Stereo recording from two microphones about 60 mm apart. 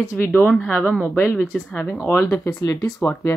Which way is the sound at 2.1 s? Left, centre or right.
Left.